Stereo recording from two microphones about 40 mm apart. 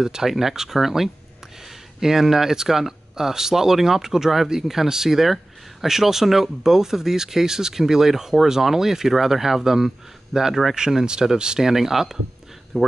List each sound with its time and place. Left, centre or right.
0.0 s speech: centre
11.7 s speech: centre